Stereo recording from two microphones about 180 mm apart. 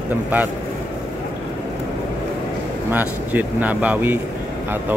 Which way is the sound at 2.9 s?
10° right (ahead or behind).